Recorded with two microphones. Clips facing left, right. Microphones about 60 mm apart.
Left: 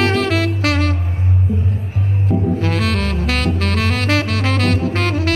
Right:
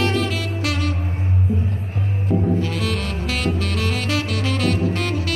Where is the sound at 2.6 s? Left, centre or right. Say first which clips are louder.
Left 4 dB; left.